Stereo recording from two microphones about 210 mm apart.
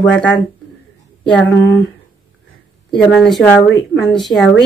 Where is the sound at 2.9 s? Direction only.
Centre (ahead or behind).